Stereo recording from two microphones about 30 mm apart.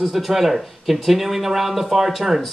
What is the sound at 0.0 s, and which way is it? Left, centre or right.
Speech, centre.